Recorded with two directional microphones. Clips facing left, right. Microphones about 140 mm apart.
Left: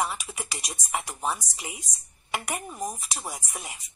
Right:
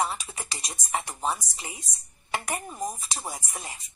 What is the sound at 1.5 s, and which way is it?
Speech, 30° right (ahead or behind).